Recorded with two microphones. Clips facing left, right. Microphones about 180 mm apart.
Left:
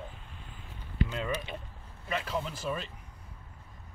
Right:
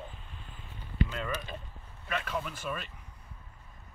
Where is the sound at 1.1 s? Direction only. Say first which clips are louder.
Left 2 dB; 20° left (ahead or behind).